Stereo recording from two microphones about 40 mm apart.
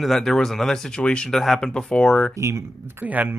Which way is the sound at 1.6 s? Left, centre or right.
Left.